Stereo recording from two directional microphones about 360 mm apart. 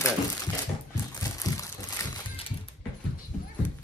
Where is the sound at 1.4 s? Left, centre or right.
Centre.